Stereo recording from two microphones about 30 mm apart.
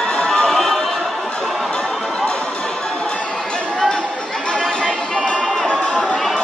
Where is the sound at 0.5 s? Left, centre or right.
Centre.